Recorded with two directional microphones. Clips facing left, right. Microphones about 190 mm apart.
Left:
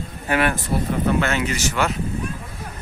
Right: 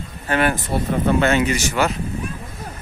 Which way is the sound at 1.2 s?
20° right (ahead or behind).